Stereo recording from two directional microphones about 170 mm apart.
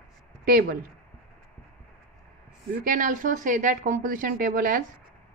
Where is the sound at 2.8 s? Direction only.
50° right (ahead or behind).